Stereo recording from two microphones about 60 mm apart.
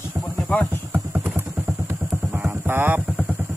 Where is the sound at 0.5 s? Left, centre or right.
Centre.